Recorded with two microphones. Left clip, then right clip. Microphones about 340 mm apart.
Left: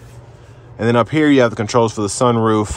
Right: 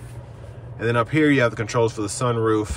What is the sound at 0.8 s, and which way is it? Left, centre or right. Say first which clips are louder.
Speech: left 5 dB; centre.